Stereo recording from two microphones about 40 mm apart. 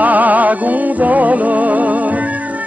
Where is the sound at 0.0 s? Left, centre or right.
Right.